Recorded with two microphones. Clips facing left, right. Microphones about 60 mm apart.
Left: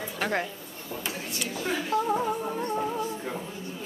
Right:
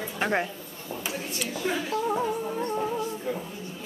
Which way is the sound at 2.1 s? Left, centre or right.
Centre.